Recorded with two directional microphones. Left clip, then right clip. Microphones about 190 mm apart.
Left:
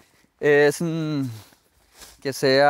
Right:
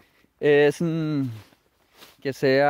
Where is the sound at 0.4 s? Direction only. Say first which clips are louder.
Left 1 dB; 20° right (ahead or behind).